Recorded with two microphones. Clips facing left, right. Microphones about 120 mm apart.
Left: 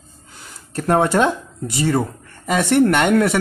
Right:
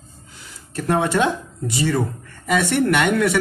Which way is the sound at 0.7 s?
45° left (ahead or behind).